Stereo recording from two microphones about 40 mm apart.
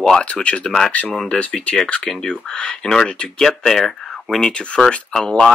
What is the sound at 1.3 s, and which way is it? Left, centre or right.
Speech, left.